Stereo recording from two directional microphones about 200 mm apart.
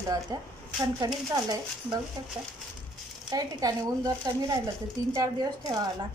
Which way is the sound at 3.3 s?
20° right (ahead or behind).